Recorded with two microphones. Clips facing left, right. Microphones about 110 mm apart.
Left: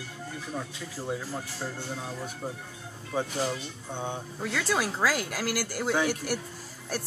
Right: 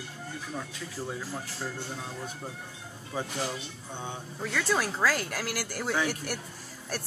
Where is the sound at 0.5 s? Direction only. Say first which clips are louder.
Left 1 dB; 10° left (ahead or behind).